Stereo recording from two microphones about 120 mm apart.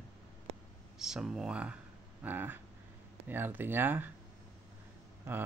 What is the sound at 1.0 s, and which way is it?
Speech, 5° right (ahead or behind).